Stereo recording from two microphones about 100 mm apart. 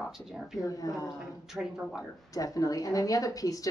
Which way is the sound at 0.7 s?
35° left (ahead or behind).